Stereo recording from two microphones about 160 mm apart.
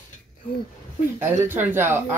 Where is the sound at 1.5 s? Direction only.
15° right (ahead or behind).